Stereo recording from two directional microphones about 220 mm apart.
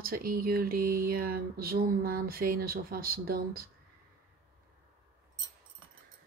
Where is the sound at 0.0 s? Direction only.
40° right (ahead or behind).